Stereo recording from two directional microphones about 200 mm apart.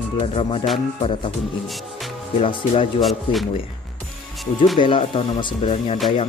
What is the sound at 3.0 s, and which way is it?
Music, centre (ahead or behind).